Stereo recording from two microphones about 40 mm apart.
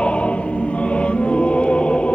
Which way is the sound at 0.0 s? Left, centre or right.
Left.